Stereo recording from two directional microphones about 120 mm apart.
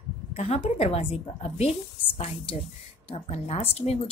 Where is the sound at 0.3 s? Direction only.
60° left (ahead or behind).